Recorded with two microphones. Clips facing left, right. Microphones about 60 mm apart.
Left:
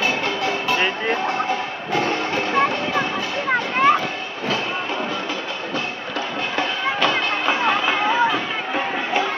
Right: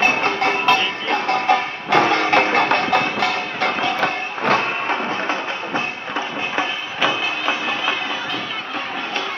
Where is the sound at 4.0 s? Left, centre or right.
Right.